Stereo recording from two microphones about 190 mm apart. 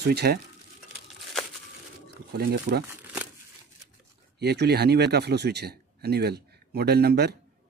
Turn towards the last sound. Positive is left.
turn(degrees=-55)  # may be behind; listen again after turning